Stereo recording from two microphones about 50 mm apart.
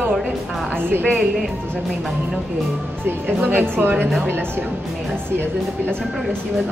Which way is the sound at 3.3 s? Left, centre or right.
Right.